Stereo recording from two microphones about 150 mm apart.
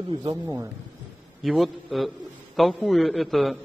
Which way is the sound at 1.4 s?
Centre (ahead or behind).